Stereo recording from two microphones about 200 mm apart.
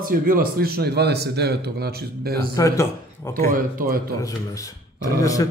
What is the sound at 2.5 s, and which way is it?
Speech, 15° left (ahead or behind).